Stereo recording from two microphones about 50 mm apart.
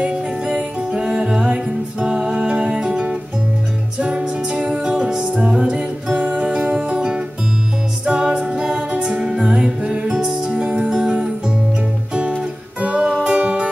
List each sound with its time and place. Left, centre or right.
0.0 s music: right